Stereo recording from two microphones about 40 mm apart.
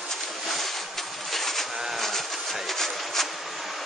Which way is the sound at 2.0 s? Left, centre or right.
Centre.